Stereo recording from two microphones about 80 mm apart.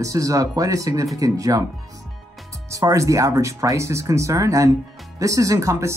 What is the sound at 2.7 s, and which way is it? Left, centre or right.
Speech, right.